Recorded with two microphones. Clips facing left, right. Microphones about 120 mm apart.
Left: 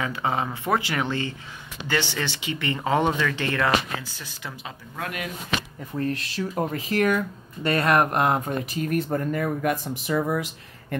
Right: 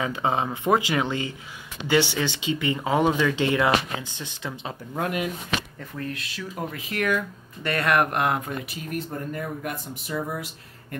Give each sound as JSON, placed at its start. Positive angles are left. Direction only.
{"t": 0.0, "sound": "speech", "side_deg": -20}
{"t": 5.9, "sound": "speech", "side_deg": 40}
{"t": 8.9, "sound": "speech", "side_deg": 90}